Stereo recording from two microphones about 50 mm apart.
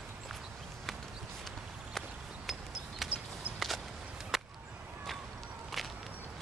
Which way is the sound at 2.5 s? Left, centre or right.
Centre.